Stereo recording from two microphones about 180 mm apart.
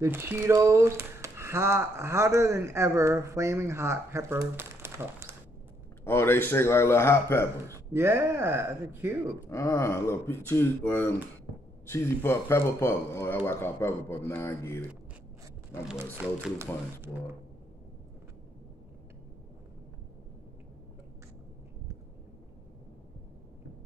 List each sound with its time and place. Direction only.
0.0 s speech: 15° right (ahead or behind)
6.0 s a man's voice: 10° left (ahead or behind)
7.9 s speech: 15° right (ahead or behind)
9.5 s a man's voice: 15° left (ahead or behind)
15.9 s speech: 5° right (ahead or behind)